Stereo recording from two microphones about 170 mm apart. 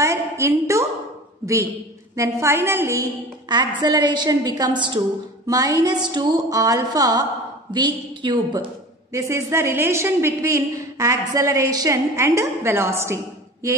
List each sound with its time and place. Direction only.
0.0 s a sound: 15° right (ahead or behind)
1.4 s a woman's voice: 20° right (ahead or behind)
9.1 s a woman's voice: 15° right (ahead or behind)